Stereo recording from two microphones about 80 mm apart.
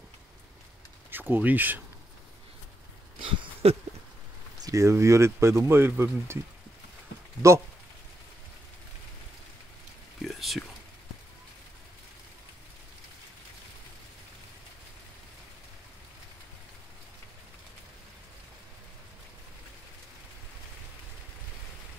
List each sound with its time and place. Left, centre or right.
1.1 s speech: right
4.6 s speech: right
10.2 s a sound: centre